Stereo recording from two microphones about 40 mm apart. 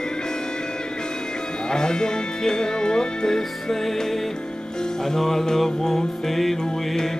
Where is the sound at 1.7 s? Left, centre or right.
Centre.